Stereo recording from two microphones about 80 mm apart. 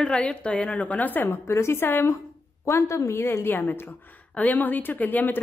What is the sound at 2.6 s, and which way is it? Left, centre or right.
A woman's voice, left.